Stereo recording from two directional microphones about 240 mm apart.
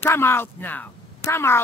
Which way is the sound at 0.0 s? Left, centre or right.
Centre.